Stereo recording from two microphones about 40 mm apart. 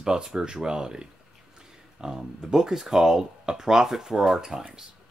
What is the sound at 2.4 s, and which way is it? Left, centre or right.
Speech, centre.